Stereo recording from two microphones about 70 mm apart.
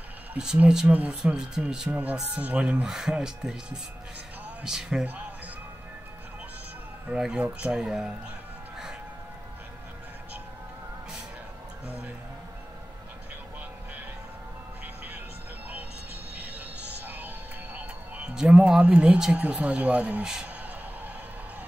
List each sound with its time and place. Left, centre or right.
0.8 s speech: right
1.9 s speech: centre
7.1 s speech: centre
16.3 s music: right
18.3 s speech: centre